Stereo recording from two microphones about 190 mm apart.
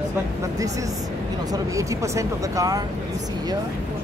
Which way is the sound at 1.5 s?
15° right (ahead or behind).